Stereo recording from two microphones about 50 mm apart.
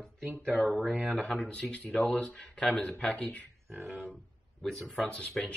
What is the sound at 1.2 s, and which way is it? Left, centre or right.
Speech, left.